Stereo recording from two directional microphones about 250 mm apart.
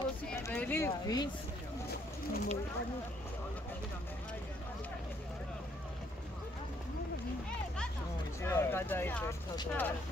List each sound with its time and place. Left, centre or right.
0.2 s a sound: centre
2.3 s speech: left
8.4 s speech: centre